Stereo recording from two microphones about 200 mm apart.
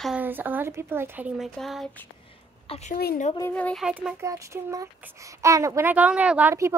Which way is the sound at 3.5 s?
5° left (ahead or behind).